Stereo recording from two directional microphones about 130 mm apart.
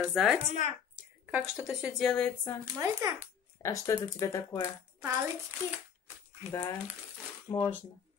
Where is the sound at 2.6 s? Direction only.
30° right (ahead or behind).